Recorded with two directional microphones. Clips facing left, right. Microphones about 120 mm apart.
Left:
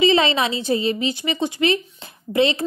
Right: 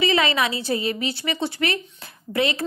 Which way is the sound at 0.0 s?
25° left (ahead or behind).